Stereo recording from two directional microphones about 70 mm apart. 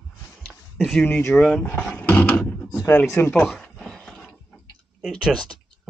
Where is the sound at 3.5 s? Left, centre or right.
Centre.